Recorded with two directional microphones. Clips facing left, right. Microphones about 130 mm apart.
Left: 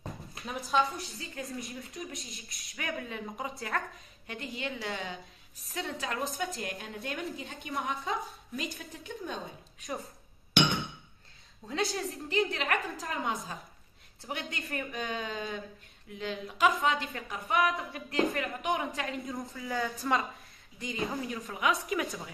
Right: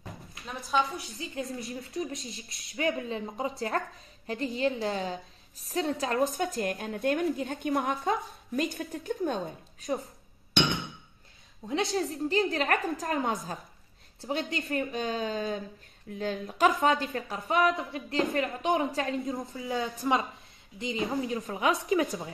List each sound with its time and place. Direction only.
0.4 s speech: centre (ahead or behind)
1.2 s a woman's voice: 25° right (ahead or behind)
5.7 s a woman's voice: 40° right (ahead or behind)
11.6 s a woman's voice: 25° right (ahead or behind)
12.5 s a woman's voice: 45° right (ahead or behind)
14.2 s a woman's voice: 25° right (ahead or behind)
16.2 s a woman's voice: 45° right (ahead or behind)
17.3 s a woman's voice: 30° right (ahead or behind)